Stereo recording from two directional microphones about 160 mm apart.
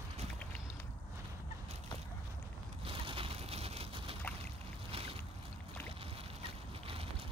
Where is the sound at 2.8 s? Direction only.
35° right (ahead or behind).